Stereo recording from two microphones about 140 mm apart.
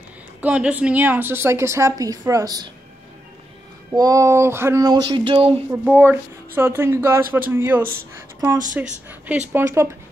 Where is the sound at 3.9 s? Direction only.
25° right (ahead or behind).